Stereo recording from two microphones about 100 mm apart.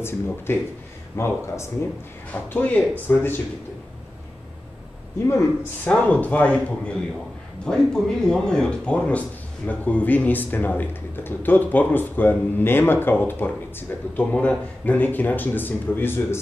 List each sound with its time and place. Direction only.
0.5 s speech: 25° left (ahead or behind)
2.5 s speech: 15° left (ahead or behind)
5.2 s speech: 30° left (ahead or behind)
5.9 s speech: 15° left (ahead or behind)